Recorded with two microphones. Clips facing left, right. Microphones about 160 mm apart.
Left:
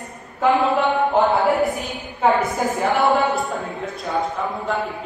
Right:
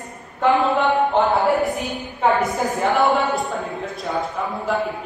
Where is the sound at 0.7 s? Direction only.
Centre (ahead or behind).